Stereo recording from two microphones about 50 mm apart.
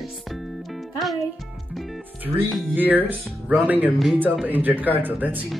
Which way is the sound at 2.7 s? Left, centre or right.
Right.